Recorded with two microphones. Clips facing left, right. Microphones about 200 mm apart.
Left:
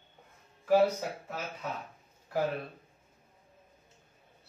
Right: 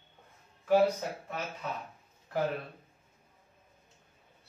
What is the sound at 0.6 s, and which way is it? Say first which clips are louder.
Speech: even; 10° left (ahead or behind).